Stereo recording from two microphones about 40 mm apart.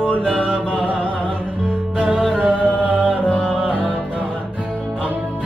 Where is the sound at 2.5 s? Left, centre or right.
Right.